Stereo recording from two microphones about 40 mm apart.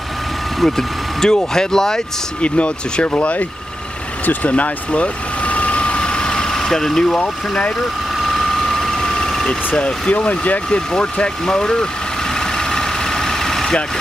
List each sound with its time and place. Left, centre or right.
0.6 s speech: centre
2.4 s speech: left
4.3 s vehicle: left; by 7.2 s centre
8.3 s vehicle: centre
9.8 s speech: left
10.1 s speech: left
10.7 s speech: left
12.4 s vehicle: centre